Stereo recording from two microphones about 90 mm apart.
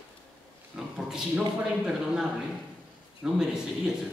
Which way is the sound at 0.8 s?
5° right (ahead or behind).